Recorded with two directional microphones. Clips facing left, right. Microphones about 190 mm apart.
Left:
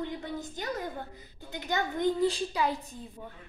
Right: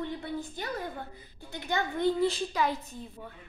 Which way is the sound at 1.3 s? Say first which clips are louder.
Even; 20° left (ahead or behind).